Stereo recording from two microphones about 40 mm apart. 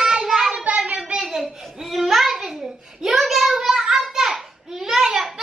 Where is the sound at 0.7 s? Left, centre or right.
Right.